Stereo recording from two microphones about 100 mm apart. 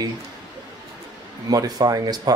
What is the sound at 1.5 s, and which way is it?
Speech, 40° right (ahead or behind).